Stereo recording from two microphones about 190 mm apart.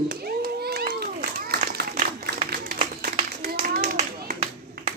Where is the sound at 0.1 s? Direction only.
55° right (ahead or behind).